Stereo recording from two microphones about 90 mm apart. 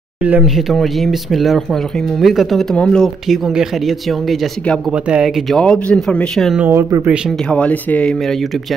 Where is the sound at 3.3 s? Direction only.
5° right (ahead or behind).